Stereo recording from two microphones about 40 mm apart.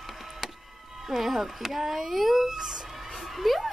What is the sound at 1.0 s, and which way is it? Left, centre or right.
A child's voice, centre.